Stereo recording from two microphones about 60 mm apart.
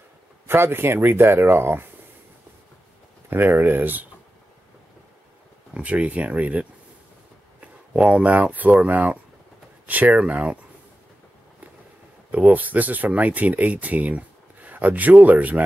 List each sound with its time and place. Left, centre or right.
0.5 s speech: right
3.3 s speech: right
5.8 s speech: right
8.1 s speech: right
12.3 s speech: right